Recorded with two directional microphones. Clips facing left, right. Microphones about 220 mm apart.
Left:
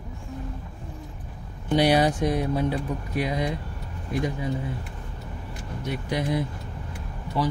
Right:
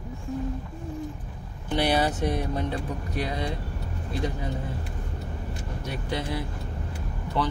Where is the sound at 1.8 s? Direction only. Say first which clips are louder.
Left 4 dB; 10° left (ahead or behind).